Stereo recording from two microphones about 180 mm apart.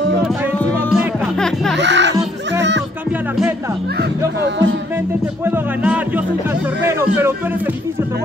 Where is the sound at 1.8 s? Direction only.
80° right.